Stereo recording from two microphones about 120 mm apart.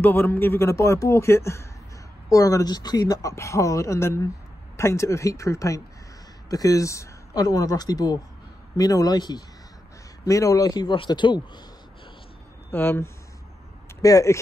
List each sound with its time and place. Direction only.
0.0 s speech: 15° left (ahead or behind); by 11.6 s 40° left (ahead or behind)
12.7 s speech: 15° left (ahead or behind)